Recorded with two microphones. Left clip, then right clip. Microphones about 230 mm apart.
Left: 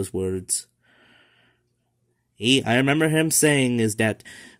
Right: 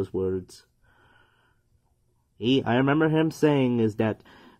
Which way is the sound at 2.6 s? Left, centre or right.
Left.